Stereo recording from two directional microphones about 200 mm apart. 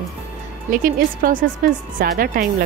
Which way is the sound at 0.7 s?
45° right (ahead or behind).